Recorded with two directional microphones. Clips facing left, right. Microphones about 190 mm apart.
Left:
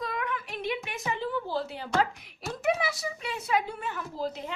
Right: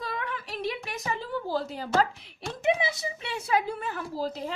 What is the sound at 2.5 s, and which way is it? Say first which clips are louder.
A woman's voice: right 2 dB; 25° right (ahead or behind).